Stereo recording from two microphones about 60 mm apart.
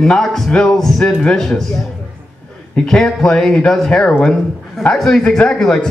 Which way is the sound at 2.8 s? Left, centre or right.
Centre.